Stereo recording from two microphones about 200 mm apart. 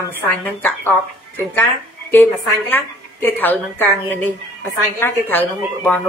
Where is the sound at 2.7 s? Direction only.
10° left (ahead or behind).